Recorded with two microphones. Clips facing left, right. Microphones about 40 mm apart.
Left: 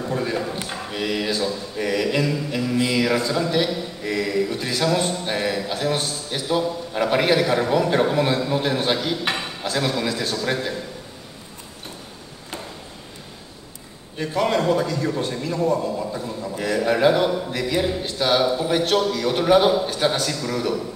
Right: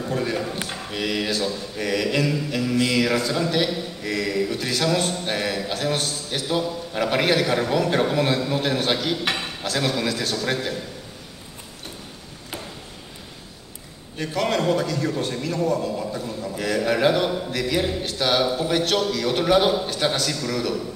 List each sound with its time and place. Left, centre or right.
0.0 s a man's voice: centre
2.7 s mantra: centre
3.0 s a man's voice: centre
5.1 s a man's voice: centre
5.9 s a man's voice: centre
6.4 s a man's voice: centre
14.2 s a man's voice: centre
15.5 s a man's voice: centre
15.9 s a man's voice: centre